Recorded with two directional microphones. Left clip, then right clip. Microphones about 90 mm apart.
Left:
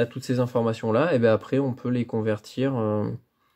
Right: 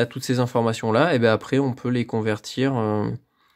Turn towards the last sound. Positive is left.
turn(degrees=-45)  # may be behind; listen again after turning